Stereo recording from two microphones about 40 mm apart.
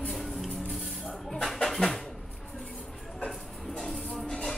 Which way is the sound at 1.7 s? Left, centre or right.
Centre.